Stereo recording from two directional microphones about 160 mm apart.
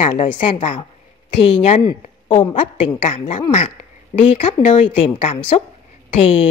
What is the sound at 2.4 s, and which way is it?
Speech, 30° left (ahead or behind).